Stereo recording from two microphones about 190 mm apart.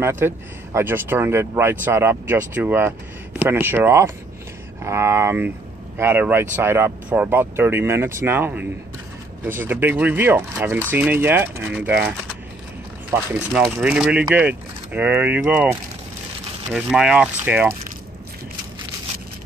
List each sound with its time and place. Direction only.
0.0 s speech: 15° right (ahead or behind)